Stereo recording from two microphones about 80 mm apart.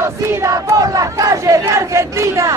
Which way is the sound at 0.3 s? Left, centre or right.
Right.